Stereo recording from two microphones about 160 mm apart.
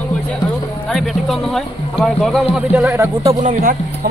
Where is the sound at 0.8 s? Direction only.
Centre (ahead or behind).